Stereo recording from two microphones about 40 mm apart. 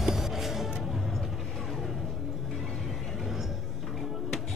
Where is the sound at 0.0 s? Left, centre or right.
Centre.